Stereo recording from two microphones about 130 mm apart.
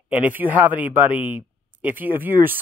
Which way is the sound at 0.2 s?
15° right (ahead or behind).